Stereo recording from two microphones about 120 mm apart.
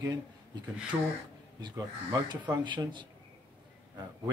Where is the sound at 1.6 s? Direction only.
40° right (ahead or behind).